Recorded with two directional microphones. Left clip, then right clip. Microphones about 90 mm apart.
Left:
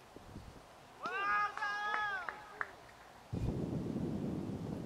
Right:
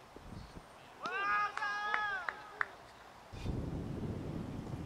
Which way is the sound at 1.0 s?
5° left (ahead or behind).